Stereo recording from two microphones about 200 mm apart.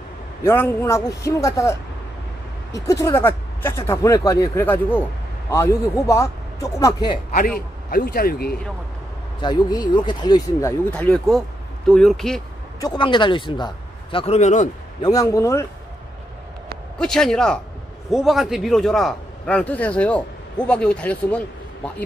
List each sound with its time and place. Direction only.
0.4 s speech: 10° left (ahead or behind)
7.9 s speech: 50° left (ahead or behind)
9.4 s a man's voice: 20° left (ahead or behind)
10.9 s a man's voice: 5° left (ahead or behind)
12.8 s a man's voice: 25° left (ahead or behind)
15.0 s speech: 15° left (ahead or behind)
17.0 s a man's voice: 5° left (ahead or behind)